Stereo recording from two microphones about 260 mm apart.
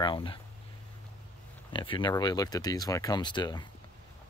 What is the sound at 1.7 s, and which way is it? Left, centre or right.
Speech, centre.